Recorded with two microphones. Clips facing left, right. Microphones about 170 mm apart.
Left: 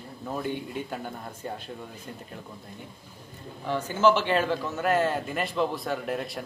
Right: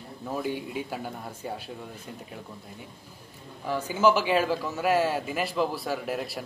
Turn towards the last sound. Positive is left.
turn(degrees=-5)  # may be behind; listen again after turning